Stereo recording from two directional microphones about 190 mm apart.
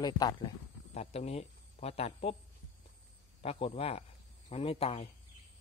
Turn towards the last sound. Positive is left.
turn(degrees=30)  # may be behind; listen again after turning